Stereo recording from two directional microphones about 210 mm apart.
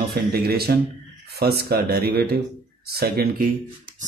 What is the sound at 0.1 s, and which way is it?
Speech, 50° right (ahead or behind).